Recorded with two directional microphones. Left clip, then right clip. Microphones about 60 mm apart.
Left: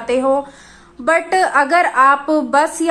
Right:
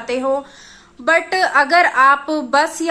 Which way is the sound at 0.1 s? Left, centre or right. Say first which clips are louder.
Left 4 dB; centre.